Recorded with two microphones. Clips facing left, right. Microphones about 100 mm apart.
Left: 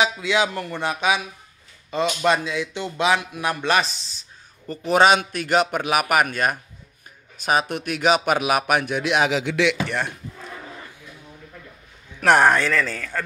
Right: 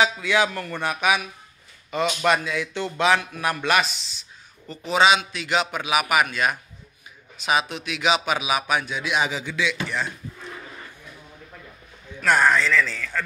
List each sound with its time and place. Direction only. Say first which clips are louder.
0.0 s speech: even; 20° left (ahead or behind); by 4.7 s 40° left (ahead or behind)
4.8 s a man's voice: left 3 dB; 50° left (ahead or behind)
12.2 s speech: left 3 dB; 70° left (ahead or behind); by 13.2 s 50° left (ahead or behind)